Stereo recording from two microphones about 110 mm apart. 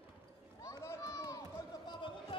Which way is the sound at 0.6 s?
30° left (ahead or behind).